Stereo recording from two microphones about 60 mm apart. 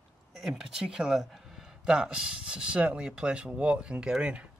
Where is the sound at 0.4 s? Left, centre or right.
Centre.